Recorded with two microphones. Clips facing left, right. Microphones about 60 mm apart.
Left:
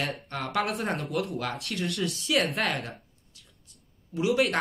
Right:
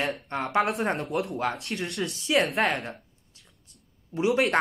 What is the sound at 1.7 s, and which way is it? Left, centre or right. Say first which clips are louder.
Speech: even; right.